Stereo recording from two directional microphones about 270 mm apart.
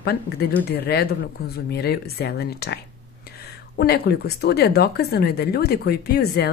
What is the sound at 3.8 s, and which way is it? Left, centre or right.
Speech, left.